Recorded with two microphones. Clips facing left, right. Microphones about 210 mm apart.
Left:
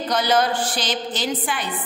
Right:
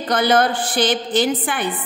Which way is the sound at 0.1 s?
55° right (ahead or behind).